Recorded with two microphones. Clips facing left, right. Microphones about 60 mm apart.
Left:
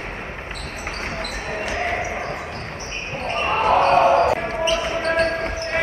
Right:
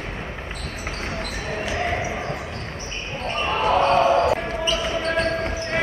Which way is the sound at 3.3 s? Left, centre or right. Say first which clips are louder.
Left 3 dB; left.